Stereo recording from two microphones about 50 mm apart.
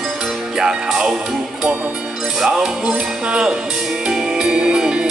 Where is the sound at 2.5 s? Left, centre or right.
Centre.